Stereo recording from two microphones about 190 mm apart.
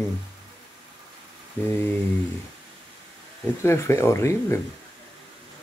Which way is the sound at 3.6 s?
15° left (ahead or behind).